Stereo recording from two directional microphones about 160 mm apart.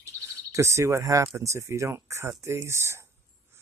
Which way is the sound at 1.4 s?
20° right (ahead or behind).